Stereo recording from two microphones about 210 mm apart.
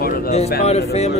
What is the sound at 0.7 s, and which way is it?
Speech, 30° left (ahead or behind).